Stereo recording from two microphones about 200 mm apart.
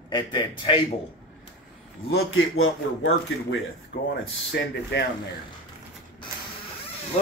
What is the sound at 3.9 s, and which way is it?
Speech, 65° left (ahead or behind).